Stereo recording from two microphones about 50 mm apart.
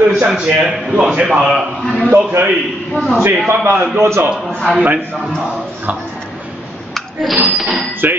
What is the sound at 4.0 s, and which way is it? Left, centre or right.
Speech, right.